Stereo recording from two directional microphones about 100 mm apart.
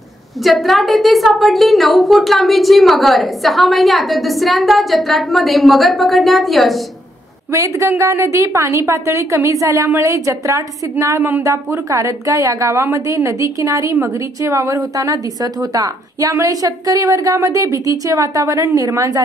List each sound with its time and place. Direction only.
0.4 s a woman's voice: centre (ahead or behind)
7.5 s a woman's voice: 30° right (ahead or behind)